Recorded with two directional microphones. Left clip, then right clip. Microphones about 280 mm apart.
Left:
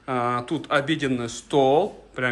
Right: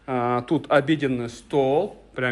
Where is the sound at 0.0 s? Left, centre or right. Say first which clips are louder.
Right 1 dB; centre.